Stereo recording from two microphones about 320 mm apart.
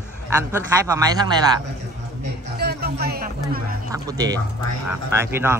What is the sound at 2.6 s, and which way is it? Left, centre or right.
Speech, right.